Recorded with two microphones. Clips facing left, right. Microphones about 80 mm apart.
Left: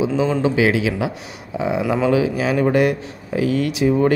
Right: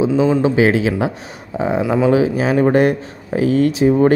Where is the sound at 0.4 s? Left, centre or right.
Right.